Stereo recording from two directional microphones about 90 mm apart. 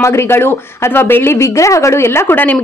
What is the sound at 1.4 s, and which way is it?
Speech, 35° left (ahead or behind).